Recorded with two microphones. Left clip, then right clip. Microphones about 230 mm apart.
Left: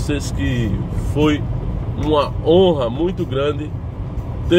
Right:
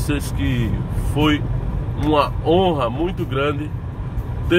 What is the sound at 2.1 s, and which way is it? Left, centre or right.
Speech, centre.